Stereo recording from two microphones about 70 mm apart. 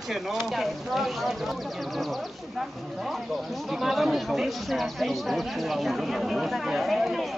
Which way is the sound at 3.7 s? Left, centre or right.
Centre.